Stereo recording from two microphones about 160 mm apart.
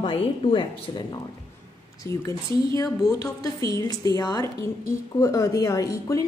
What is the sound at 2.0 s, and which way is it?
A woman's voice, 20° left (ahead or behind).